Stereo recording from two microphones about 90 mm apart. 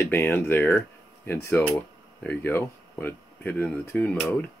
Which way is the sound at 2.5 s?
25° left (ahead or behind).